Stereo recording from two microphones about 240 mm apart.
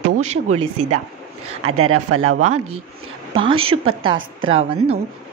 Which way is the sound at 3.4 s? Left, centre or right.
Right.